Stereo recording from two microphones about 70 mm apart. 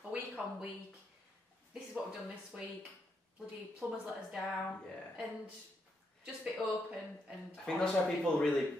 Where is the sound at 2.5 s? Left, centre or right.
Centre.